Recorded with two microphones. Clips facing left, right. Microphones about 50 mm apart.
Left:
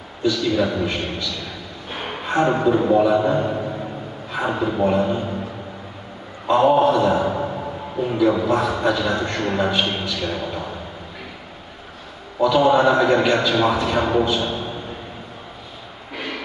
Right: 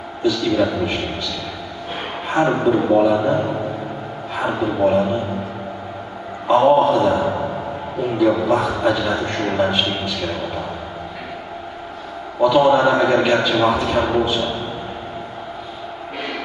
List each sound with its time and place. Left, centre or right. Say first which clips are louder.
0.2 s a man's voice: right 2 dB; centre
2.5 s a man's voice: right 1 dB; centre
4.3 s a sound: right 1 dB; centre
4.6 s a man's voice: right 3 dB; centre
6.4 s a man's voice: right 2 dB; centre
12.4 s a man's voice: right 2 dB; centre